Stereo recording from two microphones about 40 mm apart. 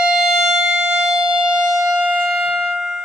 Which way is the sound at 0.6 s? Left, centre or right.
Right.